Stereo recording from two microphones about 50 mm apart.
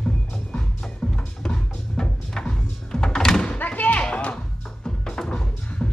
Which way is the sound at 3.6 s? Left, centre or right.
Left.